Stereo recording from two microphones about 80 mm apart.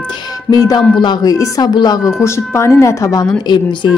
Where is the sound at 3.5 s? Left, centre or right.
Left.